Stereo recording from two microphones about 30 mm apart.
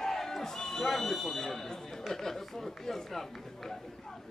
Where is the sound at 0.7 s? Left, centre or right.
Centre.